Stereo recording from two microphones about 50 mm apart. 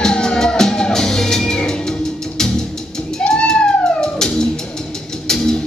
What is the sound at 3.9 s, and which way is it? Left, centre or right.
Music, centre.